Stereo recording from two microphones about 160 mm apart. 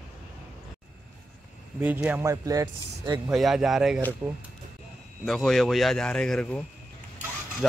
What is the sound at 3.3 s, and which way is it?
Speech, centre (ahead or behind).